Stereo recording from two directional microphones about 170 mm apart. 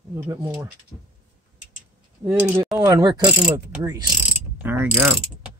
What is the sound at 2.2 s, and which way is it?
Pulleys, 10° right (ahead or behind).